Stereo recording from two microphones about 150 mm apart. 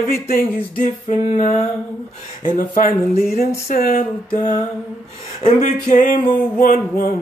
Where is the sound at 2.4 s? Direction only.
60° left (ahead or behind).